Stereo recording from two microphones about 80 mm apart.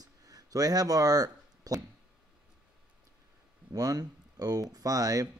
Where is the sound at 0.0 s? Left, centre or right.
Right.